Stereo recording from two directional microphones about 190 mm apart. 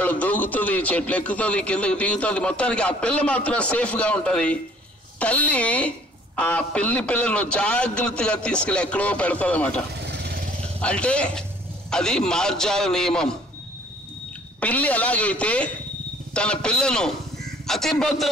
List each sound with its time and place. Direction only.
0.0 s a woman's voice: 5° left (ahead or behind)
10.0 s vehicle: 60° right (ahead or behind)
10.6 s a man's voice: 5° left (ahead or behind)
14.6 s a woman's voice: 10° left (ahead or behind)